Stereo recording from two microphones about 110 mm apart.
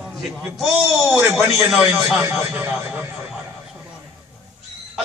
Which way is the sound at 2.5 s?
15° right (ahead or behind).